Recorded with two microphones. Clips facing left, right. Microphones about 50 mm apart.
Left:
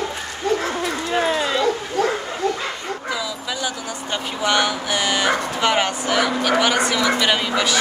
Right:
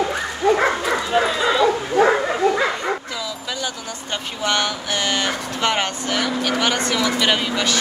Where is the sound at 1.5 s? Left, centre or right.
Centre.